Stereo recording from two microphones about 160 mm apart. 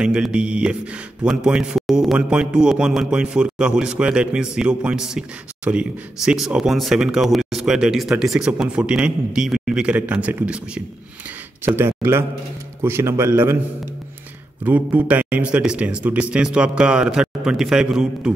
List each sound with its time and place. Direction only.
0.0 s a man's voice: 5° right (ahead or behind)
14.6 s a man's voice: 10° right (ahead or behind)